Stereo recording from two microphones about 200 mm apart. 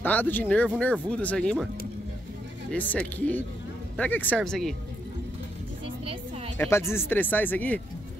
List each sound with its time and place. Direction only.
0.0 s speech: 10° left (ahead or behind)
2.7 s speech: 5° left (ahead or behind)
6.0 s music: 30° right (ahead or behind)
6.6 s speech: 10° left (ahead or behind)